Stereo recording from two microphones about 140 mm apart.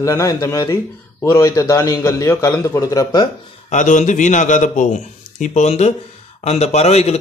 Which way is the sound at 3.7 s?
60° left (ahead or behind).